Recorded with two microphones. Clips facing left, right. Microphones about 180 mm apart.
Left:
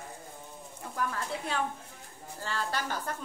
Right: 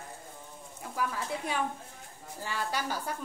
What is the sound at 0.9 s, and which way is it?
A woman's voice, 10° right (ahead or behind).